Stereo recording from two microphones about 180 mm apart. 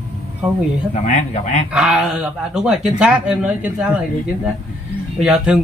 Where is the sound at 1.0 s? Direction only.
40° left (ahead or behind).